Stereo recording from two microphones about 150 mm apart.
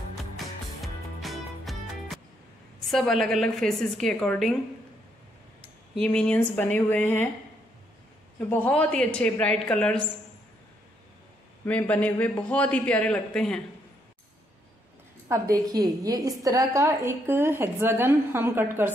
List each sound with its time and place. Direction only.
0.7 s music: centre (ahead or behind)
2.9 s a woman's voice: centre (ahead or behind)
6.0 s a man's voice: 5° left (ahead or behind)
8.5 s a man's voice: 10° left (ahead or behind)
11.6 s a man's voice: 10° left (ahead or behind)
15.2 s a woman's voice: 20° right (ahead or behind)